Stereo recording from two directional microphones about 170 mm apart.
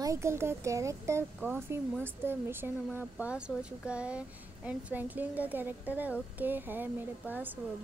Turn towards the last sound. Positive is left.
turn(degrees=-10)  # may be behind; listen again after turning